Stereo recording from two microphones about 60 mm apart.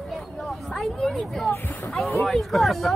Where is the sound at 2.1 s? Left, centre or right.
Centre.